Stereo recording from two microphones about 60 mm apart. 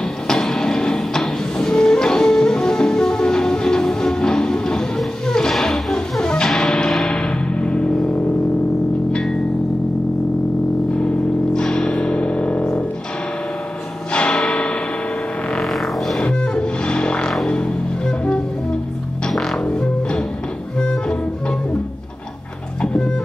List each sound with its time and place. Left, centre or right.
0.3 s music: centre
11.5 s music: centre
14.1 s a sound: centre
16.2 s music: centre
19.6 s music: centre
22.8 s music: centre